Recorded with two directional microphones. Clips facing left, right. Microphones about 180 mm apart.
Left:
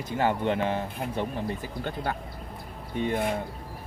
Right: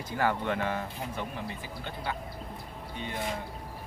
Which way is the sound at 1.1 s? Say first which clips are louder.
Left 6 dB; 45° left (ahead or behind).